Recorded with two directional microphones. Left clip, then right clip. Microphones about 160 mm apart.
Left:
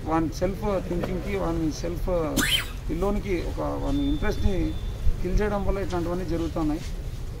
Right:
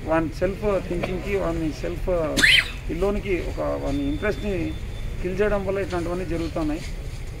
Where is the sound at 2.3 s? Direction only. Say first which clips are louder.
Right 11 dB; 90° left.